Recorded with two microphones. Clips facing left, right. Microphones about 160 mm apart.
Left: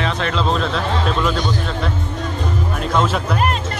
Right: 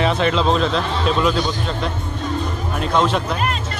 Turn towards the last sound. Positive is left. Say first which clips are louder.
# right 1 dB
turn(degrees=5)  # may be behind; listen again after turning